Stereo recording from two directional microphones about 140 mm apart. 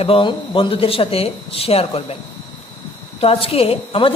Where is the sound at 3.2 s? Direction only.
45° left (ahead or behind).